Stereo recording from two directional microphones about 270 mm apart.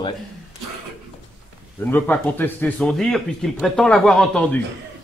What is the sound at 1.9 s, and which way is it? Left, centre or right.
Speech, centre.